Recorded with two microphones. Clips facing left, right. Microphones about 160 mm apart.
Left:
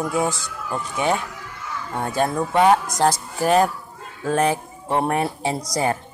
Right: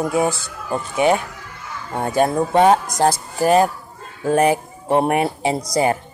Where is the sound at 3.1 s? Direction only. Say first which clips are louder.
Right 3 dB; 10° right (ahead or behind).